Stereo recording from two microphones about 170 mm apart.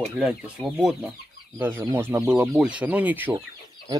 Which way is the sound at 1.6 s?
15° right (ahead or behind).